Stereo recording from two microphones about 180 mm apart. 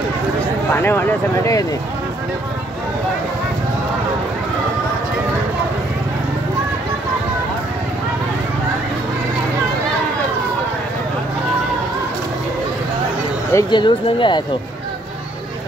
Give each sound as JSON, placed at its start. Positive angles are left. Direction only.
{"t": 0.7, "sound": "speech", "side_deg": 10}
{"t": 13.5, "sound": "speech", "side_deg": 20}